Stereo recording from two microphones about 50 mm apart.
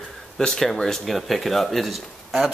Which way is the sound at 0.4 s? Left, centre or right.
Centre.